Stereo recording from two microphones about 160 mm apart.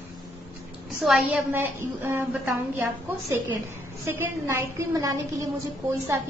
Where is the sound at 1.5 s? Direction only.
15° right (ahead or behind).